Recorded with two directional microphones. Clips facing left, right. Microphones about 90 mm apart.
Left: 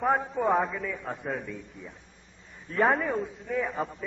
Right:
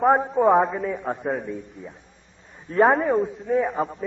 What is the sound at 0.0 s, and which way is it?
A man's voice, 30° right (ahead or behind).